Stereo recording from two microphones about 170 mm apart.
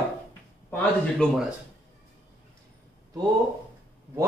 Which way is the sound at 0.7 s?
5° left (ahead or behind).